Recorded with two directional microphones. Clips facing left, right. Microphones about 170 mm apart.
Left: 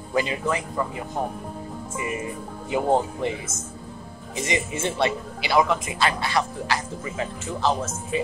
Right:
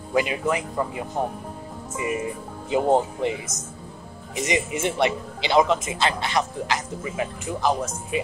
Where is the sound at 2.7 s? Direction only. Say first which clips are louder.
Right 2 dB; 20° right (ahead or behind).